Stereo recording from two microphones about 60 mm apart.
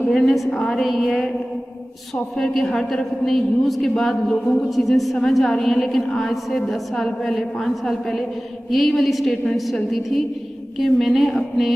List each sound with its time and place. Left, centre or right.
0.0 s a woman's voice: centre
2.3 s a woman's voice: centre